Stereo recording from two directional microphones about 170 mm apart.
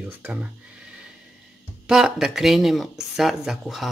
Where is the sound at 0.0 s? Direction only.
10° right (ahead or behind).